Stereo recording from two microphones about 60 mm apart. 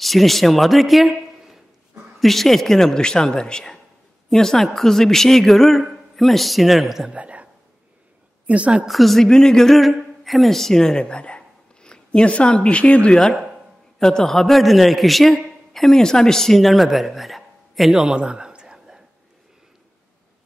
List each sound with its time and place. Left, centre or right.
0.0 s a man's voice: centre
7.1 s a woman's voice: right
8.5 s a woman's voice: right
8.8 s speech: centre; by 13.1 s left
13.3 s a sound: centre
13.9 s a man's voice: centre